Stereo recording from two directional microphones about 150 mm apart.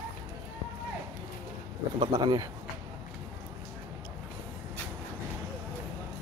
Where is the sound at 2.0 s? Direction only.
30° right (ahead or behind).